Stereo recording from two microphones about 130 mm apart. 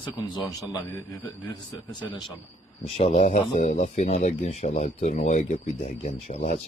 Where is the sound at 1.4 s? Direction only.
35° left (ahead or behind).